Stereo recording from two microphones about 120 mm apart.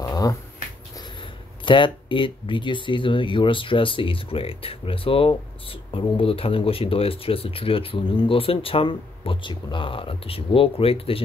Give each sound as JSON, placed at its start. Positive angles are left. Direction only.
{"t": 0.0, "sound": "finger snapping", "side_deg": 30}
{"t": 1.6, "sound": "speech", "side_deg": 40}